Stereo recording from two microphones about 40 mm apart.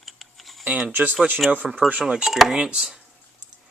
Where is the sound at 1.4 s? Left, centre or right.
Centre.